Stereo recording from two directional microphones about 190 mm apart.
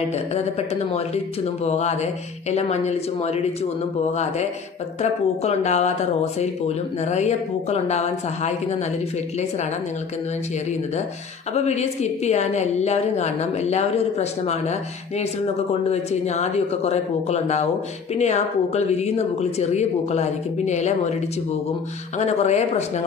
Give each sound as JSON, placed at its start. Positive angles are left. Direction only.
{"t": 0.9, "sound": "a woman's voice", "side_deg": 35}
{"t": 5.0, "sound": "a woman's voice", "side_deg": 35}
{"t": 11.5, "sound": "a woman's voice", "side_deg": 35}
{"t": 22.2, "sound": "a woman's voice", "side_deg": 35}